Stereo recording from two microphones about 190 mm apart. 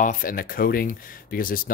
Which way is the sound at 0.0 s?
45° left (ahead or behind).